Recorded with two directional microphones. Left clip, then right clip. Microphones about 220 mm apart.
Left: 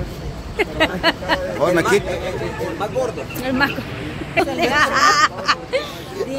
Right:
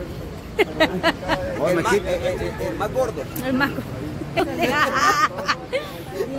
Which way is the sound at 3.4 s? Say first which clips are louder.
Left 3 dB; centre (ahead or behind).